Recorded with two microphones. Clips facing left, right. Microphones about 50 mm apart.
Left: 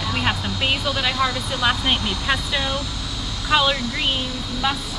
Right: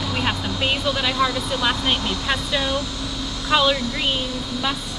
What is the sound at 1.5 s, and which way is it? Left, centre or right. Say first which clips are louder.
Speech: left 1 dB; centre.